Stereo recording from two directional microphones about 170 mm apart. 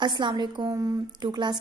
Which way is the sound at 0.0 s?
25° right (ahead or behind).